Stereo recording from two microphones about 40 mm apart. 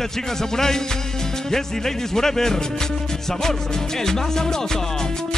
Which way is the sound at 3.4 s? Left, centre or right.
Centre.